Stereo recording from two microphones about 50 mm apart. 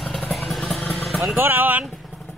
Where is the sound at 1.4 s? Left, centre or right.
Right.